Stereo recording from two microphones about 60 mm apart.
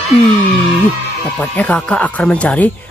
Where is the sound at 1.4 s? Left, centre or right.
Left.